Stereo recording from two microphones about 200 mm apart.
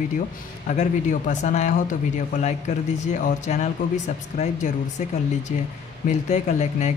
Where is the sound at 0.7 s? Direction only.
40° left (ahead or behind).